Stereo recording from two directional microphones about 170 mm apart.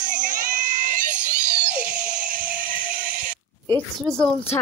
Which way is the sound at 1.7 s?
50° right (ahead or behind).